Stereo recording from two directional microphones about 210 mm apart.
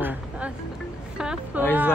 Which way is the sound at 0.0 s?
10° right (ahead or behind).